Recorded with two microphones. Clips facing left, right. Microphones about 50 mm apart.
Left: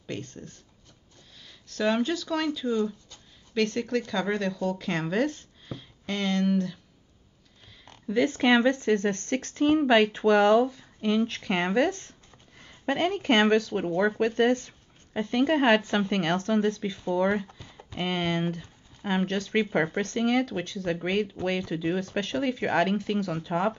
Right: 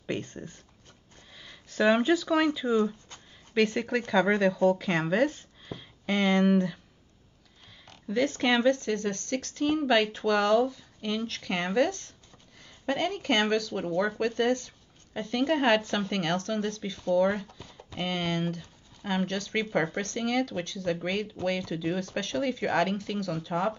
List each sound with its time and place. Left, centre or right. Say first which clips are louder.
0.0 s speech: right 3 dB; centre
8.1 s speech: left 3 dB; centre